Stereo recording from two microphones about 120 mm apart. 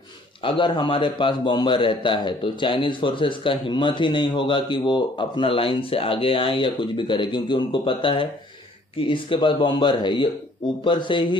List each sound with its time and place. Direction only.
0.4 s a man's voice: 45° left (ahead or behind)